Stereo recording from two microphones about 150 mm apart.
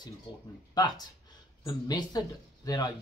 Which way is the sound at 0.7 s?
25° left (ahead or behind).